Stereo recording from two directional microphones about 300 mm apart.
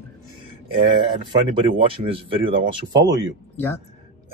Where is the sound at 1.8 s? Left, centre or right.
Centre.